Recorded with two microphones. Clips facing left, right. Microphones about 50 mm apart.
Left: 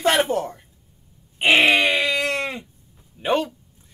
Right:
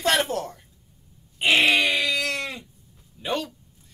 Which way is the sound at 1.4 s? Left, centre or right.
Left.